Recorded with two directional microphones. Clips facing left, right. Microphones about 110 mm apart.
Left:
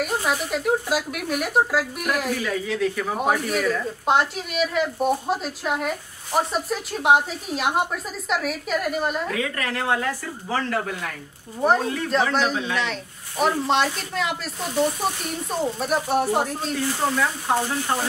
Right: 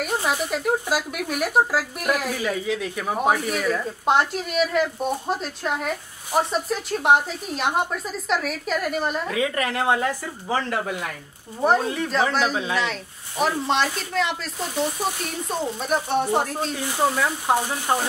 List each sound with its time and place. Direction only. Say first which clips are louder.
0.0 s speech: even; centre (ahead or behind)
2.7 s speech: left 3 dB; 15° right (ahead or behind)
3.2 s speech: right 2 dB; centre (ahead or behind)
9.3 s speech: right 3 dB; 20° right (ahead or behind)
11.6 s speech: even; centre (ahead or behind)
17.5 s speech: right 3 dB; 15° right (ahead or behind)